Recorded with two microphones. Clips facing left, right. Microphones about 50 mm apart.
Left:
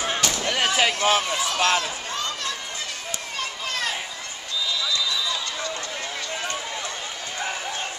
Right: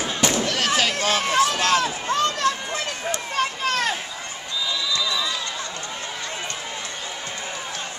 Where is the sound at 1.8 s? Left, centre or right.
Right.